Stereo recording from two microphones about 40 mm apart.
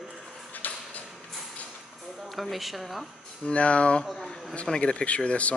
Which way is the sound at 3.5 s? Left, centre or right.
Left.